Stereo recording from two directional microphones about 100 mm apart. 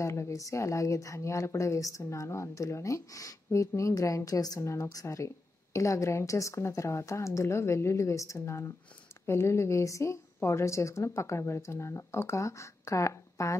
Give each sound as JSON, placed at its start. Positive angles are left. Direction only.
{"t": 0.0, "sound": "a woman's voice", "side_deg": 30}